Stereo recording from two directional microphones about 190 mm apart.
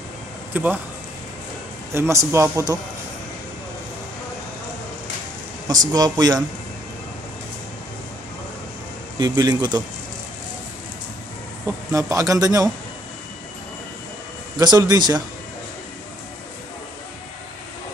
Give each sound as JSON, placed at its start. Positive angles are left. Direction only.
{"t": 0.5, "sound": "speech", "side_deg": -10}
{"t": 2.0, "sound": "a man's voice", "side_deg": -15}
{"t": 5.9, "sound": "speech", "side_deg": -20}
{"t": 9.2, "sound": "speech", "side_deg": -20}
{"t": 11.6, "sound": "a man's voice", "side_deg": -15}
{"t": 14.6, "sound": "speech", "side_deg": -20}